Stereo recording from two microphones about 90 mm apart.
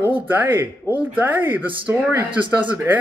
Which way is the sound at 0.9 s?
20° right (ahead or behind).